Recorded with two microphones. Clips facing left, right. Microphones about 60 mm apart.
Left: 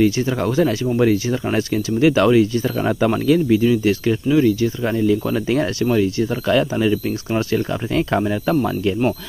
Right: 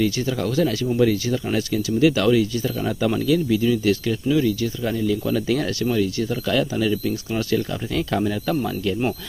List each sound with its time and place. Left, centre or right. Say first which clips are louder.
0.0 s speech: left 5 dB; left
8.5 s speech: left 4 dB; left